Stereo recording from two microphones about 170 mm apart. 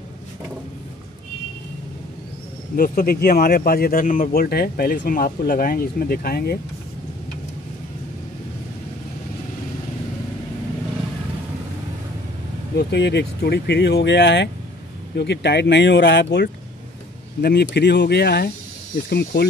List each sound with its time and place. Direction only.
2.7 s speech: 60° left (ahead or behind)
12.7 s speech: 85° left
17.4 s speech: 75° left (ahead or behind)